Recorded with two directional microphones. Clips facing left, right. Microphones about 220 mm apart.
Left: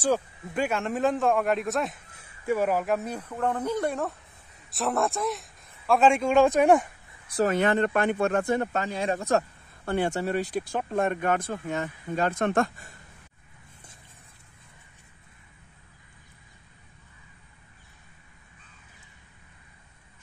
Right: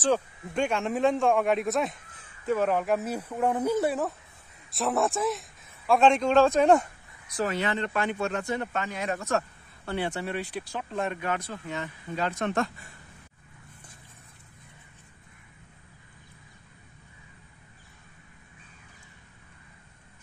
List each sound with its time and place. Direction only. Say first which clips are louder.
0.0 s a man's voice: even; 5° left (ahead or behind)
7.2 s speech: left 5 dB; 35° left (ahead or behind)
7.5 s speech: left 5 dB; 50° left (ahead or behind)
8.7 s speech: left 3 dB; 30° left (ahead or behind)
9.8 s speech: left 4 dB; 45° left (ahead or behind)